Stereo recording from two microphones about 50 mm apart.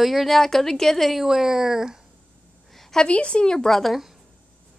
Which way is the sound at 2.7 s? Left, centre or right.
Centre.